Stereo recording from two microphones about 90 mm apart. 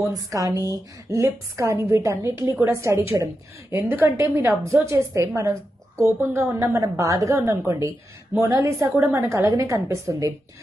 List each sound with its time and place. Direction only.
0.0 s a woman's voice: 40° right (ahead or behind); by 6.4 s 25° right (ahead or behind)
6.6 s a woman's voice: 35° right (ahead or behind)